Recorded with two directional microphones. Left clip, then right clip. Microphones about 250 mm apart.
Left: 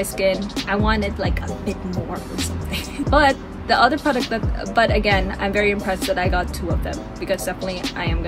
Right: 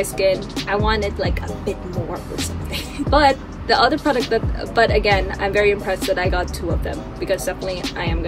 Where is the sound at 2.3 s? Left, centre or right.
Centre.